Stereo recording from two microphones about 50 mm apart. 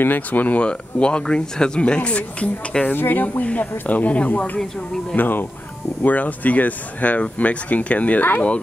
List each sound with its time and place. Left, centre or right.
0.0 s speech: left
0.7 s speech: left
2.8 s speech: left